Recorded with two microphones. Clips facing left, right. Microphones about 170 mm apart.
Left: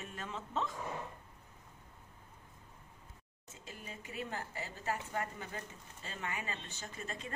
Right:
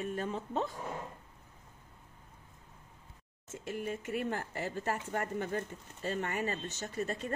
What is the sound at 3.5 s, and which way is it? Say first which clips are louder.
Speech: right 12 dB; 65° right (ahead or behind).